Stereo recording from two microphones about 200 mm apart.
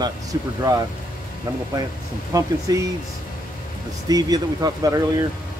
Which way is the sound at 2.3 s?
15° right (ahead or behind).